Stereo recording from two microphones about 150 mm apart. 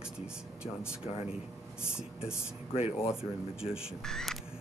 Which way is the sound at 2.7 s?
40° left (ahead or behind).